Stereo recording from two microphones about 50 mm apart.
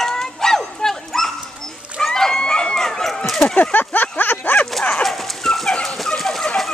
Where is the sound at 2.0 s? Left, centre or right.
Centre.